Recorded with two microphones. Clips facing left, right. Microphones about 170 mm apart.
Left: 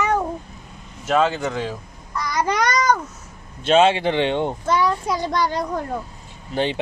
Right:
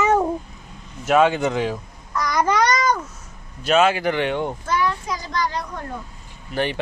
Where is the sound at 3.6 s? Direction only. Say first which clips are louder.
Left 2 dB; 25° left (ahead or behind).